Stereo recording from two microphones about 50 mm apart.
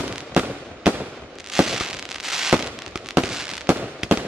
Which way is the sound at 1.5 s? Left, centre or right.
Centre.